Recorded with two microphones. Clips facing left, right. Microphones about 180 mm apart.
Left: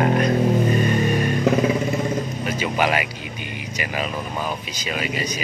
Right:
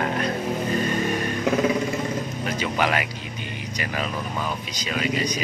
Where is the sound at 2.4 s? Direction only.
10° left (ahead or behind).